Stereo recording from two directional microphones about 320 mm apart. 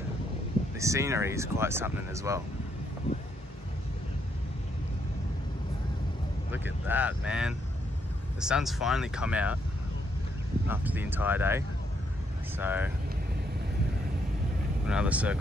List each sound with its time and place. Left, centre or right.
0.7 s speech: centre
6.5 s speech: centre
10.7 s speech: centre
14.9 s speech: centre